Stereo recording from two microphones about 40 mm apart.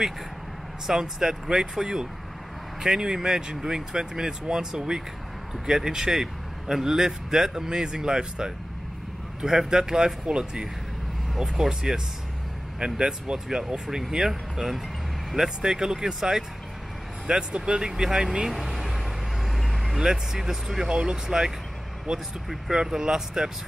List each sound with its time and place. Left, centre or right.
0.8 s speech: centre
13.8 s speech: centre
15.3 s speech: centre
18.5 s vehicle: centre
20.0 s speech: centre
20.9 s speech: centre